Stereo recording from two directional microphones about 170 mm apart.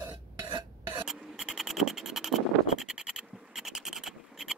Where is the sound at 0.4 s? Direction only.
25° right (ahead or behind).